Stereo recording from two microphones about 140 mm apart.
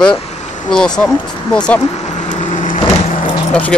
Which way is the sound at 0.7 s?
5° left (ahead or behind).